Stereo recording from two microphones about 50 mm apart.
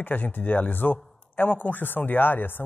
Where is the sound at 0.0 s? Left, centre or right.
Left.